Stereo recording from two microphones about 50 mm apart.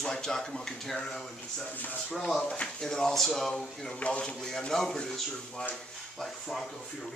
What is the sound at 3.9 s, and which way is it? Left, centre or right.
Speech, left.